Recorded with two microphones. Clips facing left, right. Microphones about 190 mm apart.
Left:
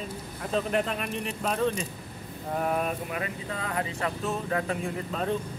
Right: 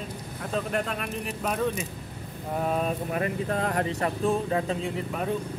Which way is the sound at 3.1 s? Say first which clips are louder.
Right 6 dB; 50° right (ahead or behind).